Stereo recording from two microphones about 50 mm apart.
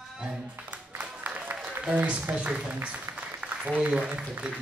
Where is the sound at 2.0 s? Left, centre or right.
Right.